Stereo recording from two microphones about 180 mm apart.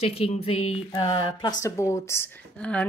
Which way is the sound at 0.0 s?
35° left (ahead or behind).